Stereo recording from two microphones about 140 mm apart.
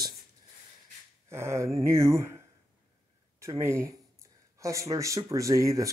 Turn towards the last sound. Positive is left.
turn(degrees=-25)  # may be behind; listen again after turning